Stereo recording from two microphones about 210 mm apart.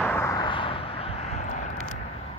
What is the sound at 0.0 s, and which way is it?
Vehicle, 10° left (ahead or behind).